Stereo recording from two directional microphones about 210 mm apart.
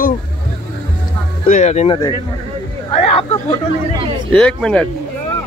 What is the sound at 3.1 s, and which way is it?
Hubbub, 30° left (ahead or behind).